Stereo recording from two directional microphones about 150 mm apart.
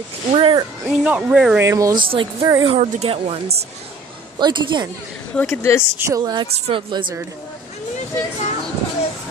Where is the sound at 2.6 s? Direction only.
40° right (ahead or behind).